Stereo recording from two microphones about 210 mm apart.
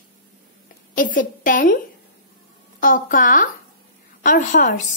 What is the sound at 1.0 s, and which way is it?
Speech, 40° left (ahead or behind).